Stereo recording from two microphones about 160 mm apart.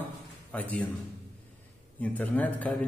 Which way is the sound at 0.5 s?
10° left (ahead or behind).